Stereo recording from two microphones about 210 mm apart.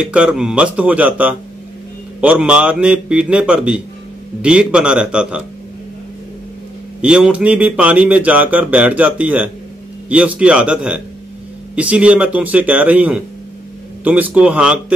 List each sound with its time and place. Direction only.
0.0 s a man's voice: 5° right (ahead or behind)
7.0 s a man's voice: 5° right (ahead or behind)